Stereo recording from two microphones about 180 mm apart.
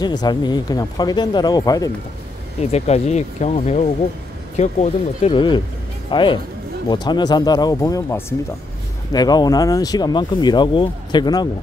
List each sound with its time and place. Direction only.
0.0 s speech: 25° left (ahead or behind)
2.6 s speech: 35° left (ahead or behind)
5.3 s speech: 25° left (ahead or behind)